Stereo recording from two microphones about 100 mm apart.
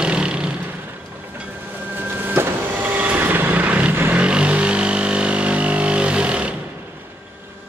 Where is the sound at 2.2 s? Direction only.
20° right (ahead or behind).